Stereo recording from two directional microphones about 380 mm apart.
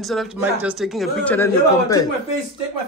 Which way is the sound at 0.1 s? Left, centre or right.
Centre.